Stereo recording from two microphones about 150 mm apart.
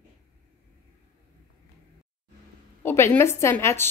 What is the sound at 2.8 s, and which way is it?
A woman's voice, 15° left (ahead or behind).